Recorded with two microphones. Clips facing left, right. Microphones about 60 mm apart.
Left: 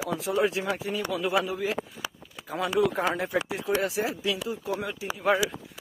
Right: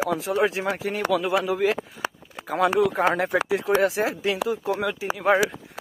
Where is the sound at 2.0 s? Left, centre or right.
Right.